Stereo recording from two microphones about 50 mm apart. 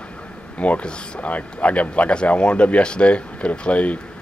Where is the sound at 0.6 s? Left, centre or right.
Left.